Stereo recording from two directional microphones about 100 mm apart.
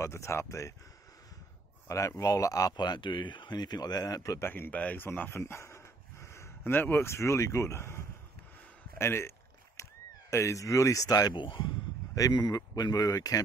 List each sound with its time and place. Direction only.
0.0 s speech: 30° left (ahead or behind)
1.9 s speech: 30° left (ahead or behind)
2.7 s speech: 45° left (ahead or behind); by 5.4 s 20° left (ahead or behind)
5.4 s speech: 30° left (ahead or behind)
9.8 s a sound: 30° left (ahead or behind)
10.3 s speech: 30° left (ahead or behind)
11.3 s speech: 55° left (ahead or behind)
12.2 s speech: 40° left (ahead or behind)